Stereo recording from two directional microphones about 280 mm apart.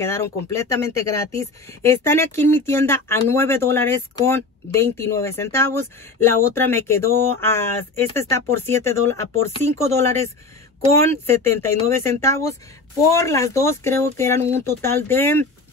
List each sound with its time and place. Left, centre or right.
0.0 s speech: centre